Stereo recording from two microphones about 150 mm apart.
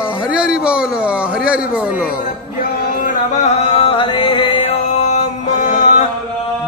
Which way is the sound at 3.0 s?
55° left (ahead or behind).